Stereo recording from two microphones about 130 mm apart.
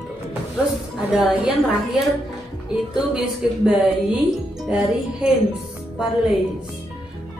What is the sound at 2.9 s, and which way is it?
Speech, 5° right (ahead or behind).